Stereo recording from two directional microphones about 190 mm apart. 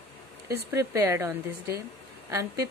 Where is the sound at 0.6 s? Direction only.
15° right (ahead or behind).